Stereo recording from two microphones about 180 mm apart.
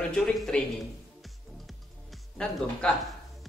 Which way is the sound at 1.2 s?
Centre (ahead or behind).